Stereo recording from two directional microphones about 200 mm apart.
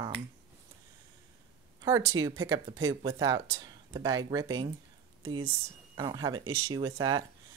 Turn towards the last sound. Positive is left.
turn(degrees=-20)  # may be behind; listen again after turning